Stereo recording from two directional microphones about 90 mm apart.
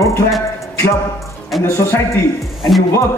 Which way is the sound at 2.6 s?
Centre (ahead or behind).